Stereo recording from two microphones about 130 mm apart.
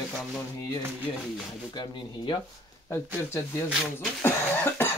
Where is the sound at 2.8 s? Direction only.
20° left (ahead or behind).